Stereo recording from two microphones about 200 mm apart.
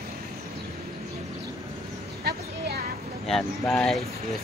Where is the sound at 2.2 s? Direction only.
55° right (ahead or behind).